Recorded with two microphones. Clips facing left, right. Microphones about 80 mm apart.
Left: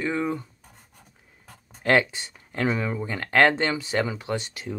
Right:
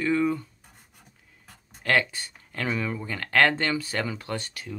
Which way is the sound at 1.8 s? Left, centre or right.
Left.